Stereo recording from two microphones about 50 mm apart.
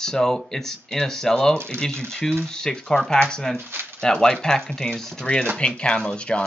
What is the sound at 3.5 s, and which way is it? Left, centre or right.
Speech, right.